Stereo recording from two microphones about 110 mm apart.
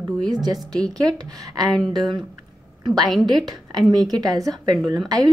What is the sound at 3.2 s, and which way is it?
A woman's voice, 40° right (ahead or behind).